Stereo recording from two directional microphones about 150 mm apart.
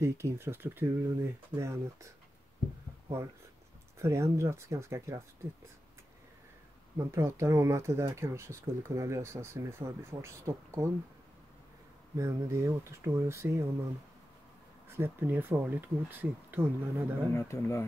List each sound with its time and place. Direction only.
0.0 s speech: 15° right (ahead or behind)
4.0 s speech: 20° right (ahead or behind)
7.0 s speech: 20° right (ahead or behind)
12.2 s speech: 20° right (ahead or behind)
14.9 s speech: 15° right (ahead or behind)
17.3 s speech: 15° left (ahead or behind)